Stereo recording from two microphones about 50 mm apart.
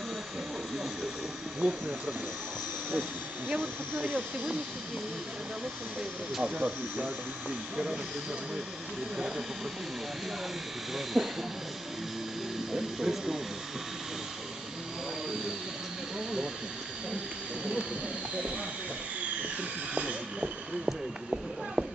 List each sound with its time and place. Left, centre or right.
1.6 s speech: centre
2.9 s speech: right
6.4 s speech: right
11.1 s speech: centre
12.7 s speech: centre
19.9 s speech: right